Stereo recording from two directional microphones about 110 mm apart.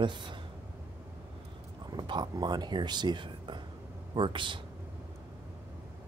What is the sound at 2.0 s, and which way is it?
Speech, 40° right (ahead or behind).